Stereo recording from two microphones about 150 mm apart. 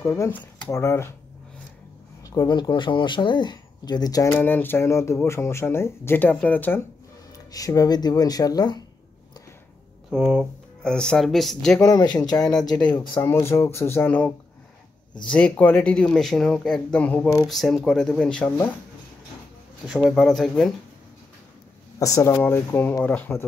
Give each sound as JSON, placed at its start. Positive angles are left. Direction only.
{"t": 0.0, "sound": "speech", "side_deg": 15}
{"t": 2.2, "sound": "speech", "side_deg": 25}
{"t": 7.3, "sound": "speech", "side_deg": 25}
{"t": 10.1, "sound": "speech", "side_deg": -5}
{"t": 11.8, "sound": "speech", "side_deg": 25}
{"t": 12.4, "sound": "speech", "side_deg": 5}
{"t": 19.9, "sound": "speech", "side_deg": -5}
{"t": 22.0, "sound": "speech", "side_deg": 20}